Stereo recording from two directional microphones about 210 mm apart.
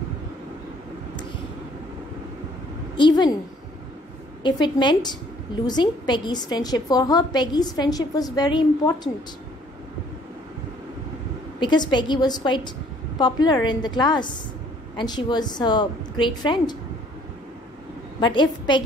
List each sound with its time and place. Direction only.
3.0 s a woman's voice: 20° left (ahead or behind)
4.4 s a woman's voice: 20° left (ahead or behind)
11.6 s a woman's voice: 20° left (ahead or behind)
18.2 s a woman's voice: 20° left (ahead or behind)